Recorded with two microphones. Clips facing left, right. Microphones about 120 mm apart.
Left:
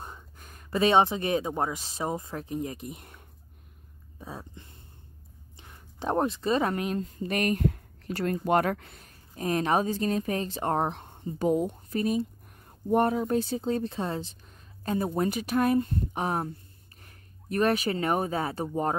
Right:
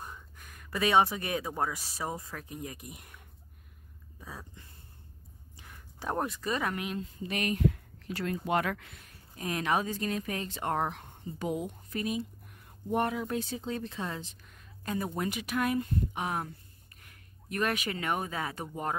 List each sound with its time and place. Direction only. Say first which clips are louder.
0.0 s speech: left 2 dB; 30° left (ahead or behind)
4.2 s speech: left 5 dB; 25° left (ahead or behind)